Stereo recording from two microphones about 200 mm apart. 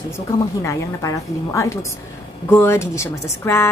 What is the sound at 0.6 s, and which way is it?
Speech, 15° left (ahead or behind).